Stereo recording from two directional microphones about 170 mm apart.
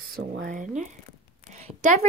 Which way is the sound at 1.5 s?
45° right (ahead or behind).